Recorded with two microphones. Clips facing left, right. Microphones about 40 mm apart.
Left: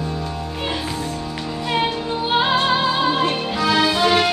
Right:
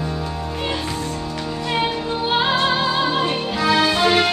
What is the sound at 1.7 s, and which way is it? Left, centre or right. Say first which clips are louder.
Music: left 1 dB; centre.